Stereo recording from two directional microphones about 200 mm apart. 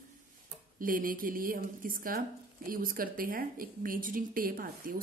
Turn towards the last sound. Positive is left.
turn(degrees=-45)  # may be behind; listen again after turning